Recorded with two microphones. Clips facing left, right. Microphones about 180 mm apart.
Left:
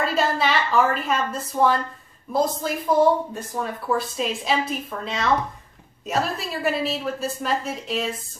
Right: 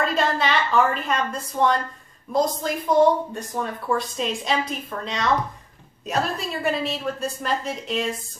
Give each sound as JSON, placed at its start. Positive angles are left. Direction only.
{"t": 0.0, "sound": "a woman's voice", "side_deg": 5}